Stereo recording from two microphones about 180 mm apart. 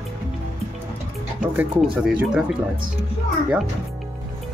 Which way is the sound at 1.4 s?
5° right (ahead or behind).